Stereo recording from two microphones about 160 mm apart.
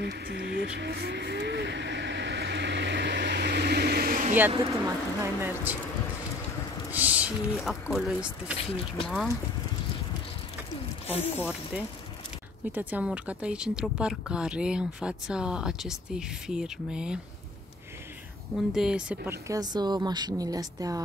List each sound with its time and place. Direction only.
0.0 s vehicle: 90° right; by 4.4 s 55° right (ahead or behind)
4.8 s a sound: 15° right (ahead or behind)
6.9 s speech: 10° right (ahead or behind)
11.1 s speech: 40° left (ahead or behind)
12.7 s speech: 10° right (ahead or behind)
18.7 s speech: 5° right (ahead or behind)
19.4 s a woman's voice: 25° right (ahead or behind)